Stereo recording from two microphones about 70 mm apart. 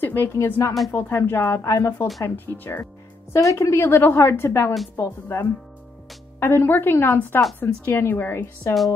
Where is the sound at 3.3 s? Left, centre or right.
Left.